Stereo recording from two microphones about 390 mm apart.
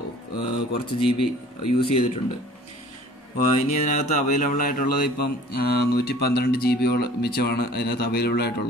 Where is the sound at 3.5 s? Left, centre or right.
Centre.